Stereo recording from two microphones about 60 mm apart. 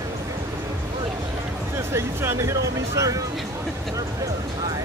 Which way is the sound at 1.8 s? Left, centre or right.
Right.